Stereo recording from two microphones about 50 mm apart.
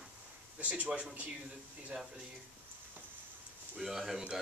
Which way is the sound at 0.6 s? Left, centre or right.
Right.